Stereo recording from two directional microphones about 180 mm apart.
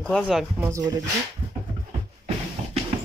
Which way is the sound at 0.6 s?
15° right (ahead or behind).